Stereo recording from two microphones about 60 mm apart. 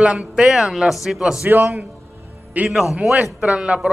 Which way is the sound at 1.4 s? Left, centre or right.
Right.